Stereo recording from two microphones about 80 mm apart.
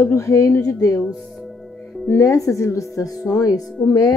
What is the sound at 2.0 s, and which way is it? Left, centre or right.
Speech, left.